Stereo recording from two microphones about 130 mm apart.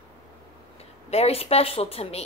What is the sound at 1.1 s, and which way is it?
A woman's voice, 50° left (ahead or behind).